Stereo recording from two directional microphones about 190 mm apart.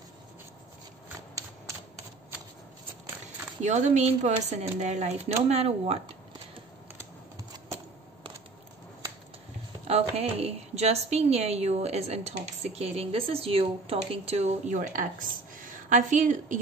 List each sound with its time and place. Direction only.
3.6 s a woman's voice: 35° right (ahead or behind)
7.3 s a sound: 20° right (ahead or behind)
9.8 s a woman's voice: 35° right (ahead or behind)